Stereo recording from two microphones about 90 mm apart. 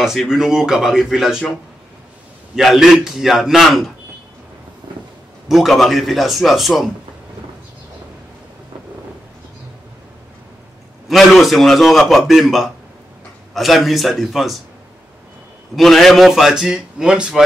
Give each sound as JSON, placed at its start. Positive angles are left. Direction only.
{"t": 0.0, "sound": "a man's voice", "side_deg": -5}
{"t": 2.5, "sound": "a man's voice", "side_deg": -5}
{"t": 4.8, "sound": "a sound", "side_deg": -55}
{"t": 5.5, "sound": "a man's voice", "side_deg": 0}
{"t": 11.1, "sound": "a man's voice", "side_deg": 0}
{"t": 15.7, "sound": "a man's voice", "side_deg": 0}